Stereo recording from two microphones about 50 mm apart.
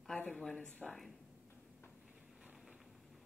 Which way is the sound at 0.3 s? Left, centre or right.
Centre.